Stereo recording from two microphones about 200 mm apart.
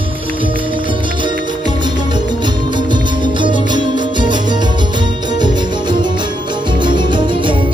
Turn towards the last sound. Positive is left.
turn(degrees=-25)  # may be behind; listen again after turning